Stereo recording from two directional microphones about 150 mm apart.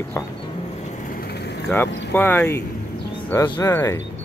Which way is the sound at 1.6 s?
15° left (ahead or behind).